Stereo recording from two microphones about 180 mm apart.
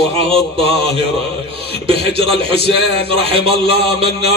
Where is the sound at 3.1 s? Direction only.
30° right (ahead or behind).